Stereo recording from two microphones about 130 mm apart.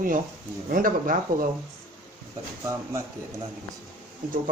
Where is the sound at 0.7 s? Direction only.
90° right.